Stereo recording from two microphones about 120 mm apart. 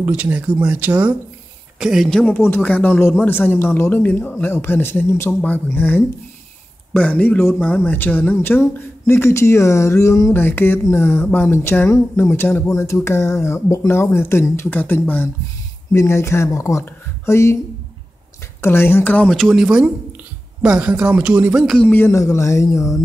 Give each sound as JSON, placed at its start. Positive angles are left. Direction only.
{"t": 0.0, "sound": "a woman's voice", "side_deg": -10}
{"t": 2.0, "sound": "speech", "side_deg": 5}
{"t": 2.3, "sound": "speech", "side_deg": 20}
{"t": 18.6, "sound": "speech", "side_deg": 20}
{"t": 19.2, "sound": "speech", "side_deg": 0}
{"t": 21.7, "sound": "speech", "side_deg": 15}